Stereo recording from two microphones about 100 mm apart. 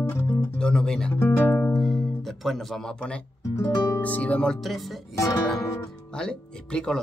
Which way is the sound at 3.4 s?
30° left (ahead or behind).